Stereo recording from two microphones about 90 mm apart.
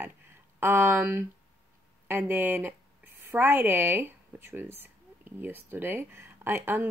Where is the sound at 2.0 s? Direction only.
25° right (ahead or behind).